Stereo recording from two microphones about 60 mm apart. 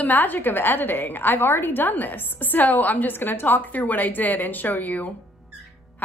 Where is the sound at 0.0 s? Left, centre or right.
Left.